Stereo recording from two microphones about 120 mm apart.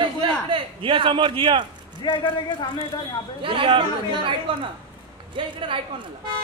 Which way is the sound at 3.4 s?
45° right (ahead or behind).